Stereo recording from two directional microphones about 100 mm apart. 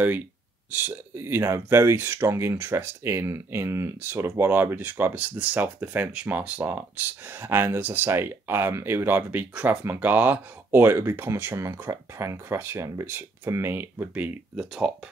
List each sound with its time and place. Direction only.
0.7 s speech: 20° right (ahead or behind)